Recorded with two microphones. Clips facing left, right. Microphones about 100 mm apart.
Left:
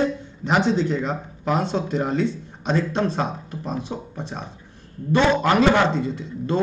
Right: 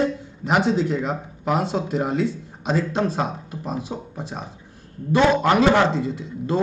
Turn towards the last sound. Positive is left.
turn(degrees=-5)  # may be behind; listen again after turning